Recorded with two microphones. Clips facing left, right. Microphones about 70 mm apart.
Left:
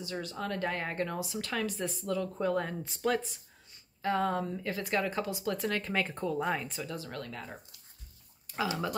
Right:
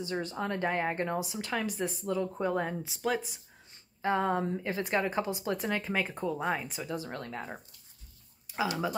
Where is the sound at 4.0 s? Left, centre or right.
Right.